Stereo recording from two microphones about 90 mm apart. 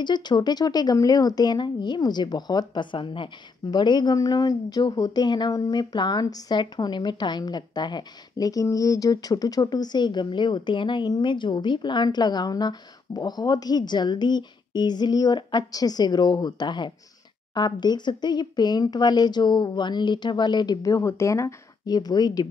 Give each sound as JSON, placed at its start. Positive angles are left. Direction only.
{"t": 0.0, "sound": "a woman's voice", "side_deg": 55}
{"t": 3.7, "sound": "a woman's voice", "side_deg": 55}
{"t": 21.8, "sound": "a woman's voice", "side_deg": 50}